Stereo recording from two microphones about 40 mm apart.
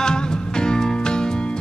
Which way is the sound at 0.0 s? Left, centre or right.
Centre.